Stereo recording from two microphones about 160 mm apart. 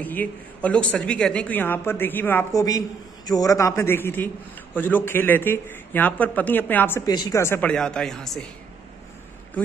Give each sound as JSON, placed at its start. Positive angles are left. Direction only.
{"t": 0.0, "sound": "speech", "side_deg": 10}
{"t": 7.1, "sound": "a woman's voice", "side_deg": 25}
{"t": 7.7, "sound": "speech", "side_deg": 5}